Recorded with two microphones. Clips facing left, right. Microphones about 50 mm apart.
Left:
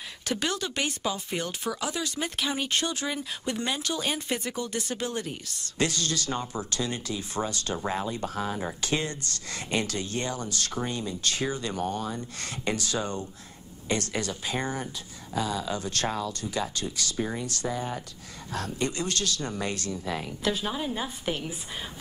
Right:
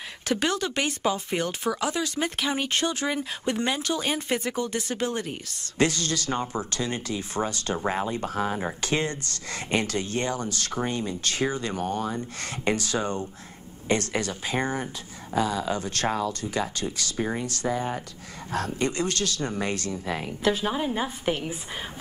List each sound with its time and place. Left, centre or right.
0.3 s speech: right